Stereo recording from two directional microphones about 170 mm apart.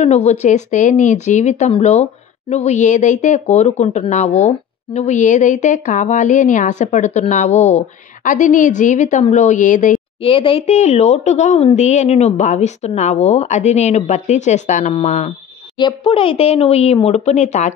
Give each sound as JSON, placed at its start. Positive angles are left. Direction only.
{"t": 0.0, "sound": "speech", "side_deg": 40}
{"t": 10.2, "sound": "speech", "side_deg": 35}
{"t": 15.8, "sound": "speech", "side_deg": 30}